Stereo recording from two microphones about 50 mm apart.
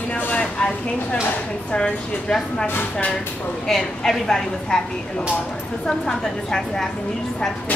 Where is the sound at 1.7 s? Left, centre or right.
Left.